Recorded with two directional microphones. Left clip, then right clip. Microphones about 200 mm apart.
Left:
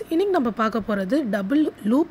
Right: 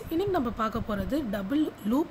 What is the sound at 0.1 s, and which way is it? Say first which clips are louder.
Speech: left 7 dB; 30° left (ahead or behind).